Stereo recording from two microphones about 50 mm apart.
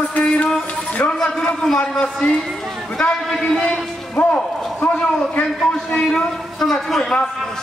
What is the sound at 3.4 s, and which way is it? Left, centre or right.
Speech, centre.